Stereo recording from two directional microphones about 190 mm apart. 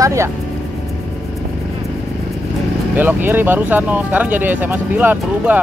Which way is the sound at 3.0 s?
10° right (ahead or behind).